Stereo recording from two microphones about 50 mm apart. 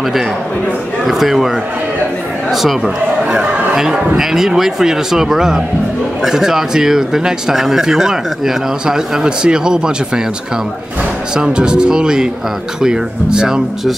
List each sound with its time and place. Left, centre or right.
1.0 s speech: centre
2.5 s speech: centre
11.3 s speech: centre